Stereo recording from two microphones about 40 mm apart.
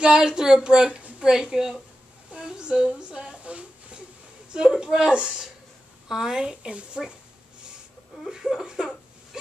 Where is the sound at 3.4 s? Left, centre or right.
Right.